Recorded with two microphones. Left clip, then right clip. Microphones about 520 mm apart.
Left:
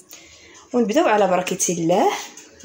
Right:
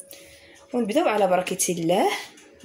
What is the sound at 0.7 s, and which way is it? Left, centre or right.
Speech, right.